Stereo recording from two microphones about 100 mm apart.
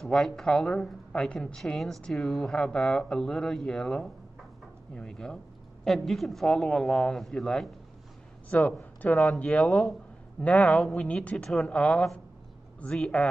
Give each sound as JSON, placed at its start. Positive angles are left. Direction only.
{"t": 0.0, "sound": "a woman's voice", "side_deg": 5}